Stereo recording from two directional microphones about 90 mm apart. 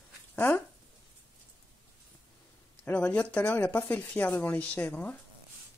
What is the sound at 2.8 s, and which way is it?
Speech, 15° left (ahead or behind).